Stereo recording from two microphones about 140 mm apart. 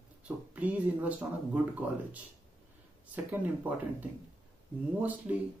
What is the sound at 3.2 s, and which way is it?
Speech, 10° right (ahead or behind).